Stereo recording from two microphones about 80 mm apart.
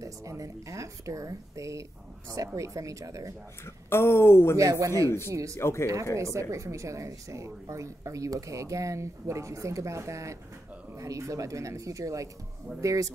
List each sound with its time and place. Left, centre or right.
0.0 s a woman's voice: right
3.6 s speech: left
4.6 s a woman's voice: right
5.6 s speech: left
6.1 s a woman's voice: right